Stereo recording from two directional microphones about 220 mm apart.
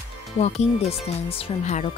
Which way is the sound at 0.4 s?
30° left (ahead or behind).